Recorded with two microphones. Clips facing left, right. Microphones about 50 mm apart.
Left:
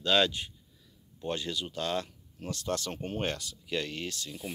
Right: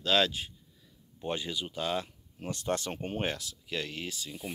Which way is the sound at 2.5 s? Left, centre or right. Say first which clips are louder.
Right 1 dB; right.